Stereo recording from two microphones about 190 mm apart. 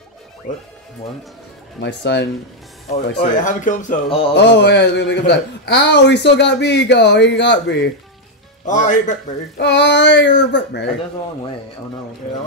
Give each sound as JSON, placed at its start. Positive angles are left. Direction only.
{"t": 1.8, "sound": "a man's voice", "side_deg": 65}
{"t": 3.3, "sound": "speech", "side_deg": 40}
{"t": 4.4, "sound": "a man's voice", "side_deg": 65}
{"t": 8.6, "sound": "speech", "side_deg": 40}
{"t": 9.6, "sound": "child singing", "side_deg": 65}